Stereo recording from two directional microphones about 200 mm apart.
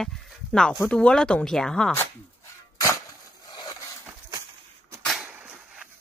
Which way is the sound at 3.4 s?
20° left (ahead or behind).